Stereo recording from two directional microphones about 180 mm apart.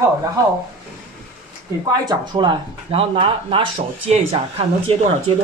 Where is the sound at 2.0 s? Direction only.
25° right (ahead or behind).